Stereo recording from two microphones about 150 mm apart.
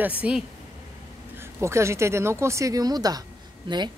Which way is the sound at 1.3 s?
15° right (ahead or behind).